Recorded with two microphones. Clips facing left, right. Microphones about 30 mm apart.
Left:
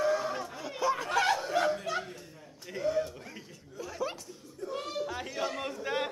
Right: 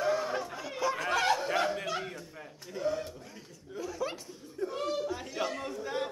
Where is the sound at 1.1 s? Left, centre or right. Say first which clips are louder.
Right 1 dB; centre.